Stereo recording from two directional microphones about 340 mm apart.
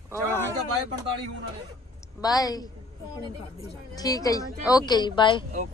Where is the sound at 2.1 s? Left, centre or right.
Centre.